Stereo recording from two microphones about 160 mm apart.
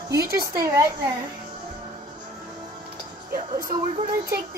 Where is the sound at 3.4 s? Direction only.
60° right (ahead or behind).